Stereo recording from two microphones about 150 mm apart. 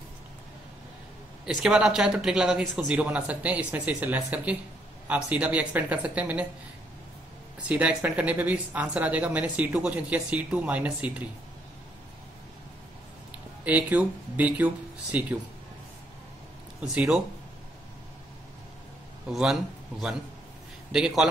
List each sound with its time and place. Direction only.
1.4 s a man's voice: 5° right (ahead or behind)
7.6 s a woman's voice: 10° right (ahead or behind)
13.7 s a woman's voice: 10° right (ahead or behind)
16.8 s a man's voice: 5° right (ahead or behind)
19.2 s a man's voice: centre (ahead or behind)